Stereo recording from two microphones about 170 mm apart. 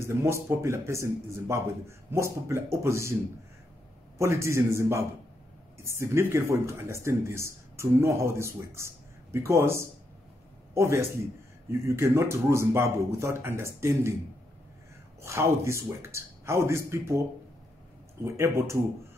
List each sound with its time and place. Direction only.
0.0 s speech: 15° right (ahead or behind)
4.2 s a man's voice: 15° right (ahead or behind)
15.2 s speech: 15° right (ahead or behind)
18.2 s speech: 15° right (ahead or behind)